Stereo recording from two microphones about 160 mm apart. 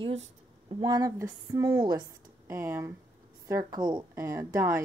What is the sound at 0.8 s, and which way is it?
A woman's voice, 25° right (ahead or behind).